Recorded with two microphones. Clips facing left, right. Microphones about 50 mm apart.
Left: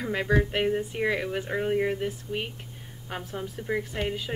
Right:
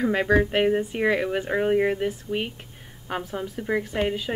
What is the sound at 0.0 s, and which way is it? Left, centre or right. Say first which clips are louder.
A woman's voice: right 5 dB; centre.